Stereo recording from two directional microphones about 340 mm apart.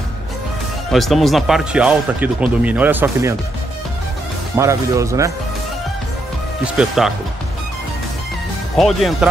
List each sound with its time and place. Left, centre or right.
0.9 s speech: centre
4.6 s speech: centre
6.6 s speech: centre
8.7 s speech: centre